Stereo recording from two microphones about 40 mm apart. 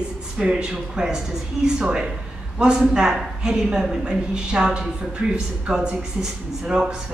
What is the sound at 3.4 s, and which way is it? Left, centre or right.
Speech, right.